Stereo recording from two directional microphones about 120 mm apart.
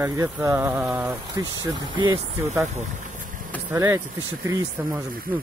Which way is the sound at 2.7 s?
85° right.